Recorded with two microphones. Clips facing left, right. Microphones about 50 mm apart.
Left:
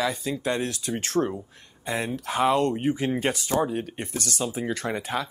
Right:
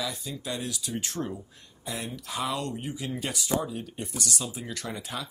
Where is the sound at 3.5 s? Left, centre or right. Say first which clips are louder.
Left 5 dB; left.